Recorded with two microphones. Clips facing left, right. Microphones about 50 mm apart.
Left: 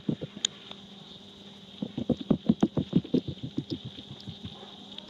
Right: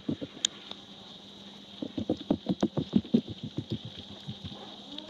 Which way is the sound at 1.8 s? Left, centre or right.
Left.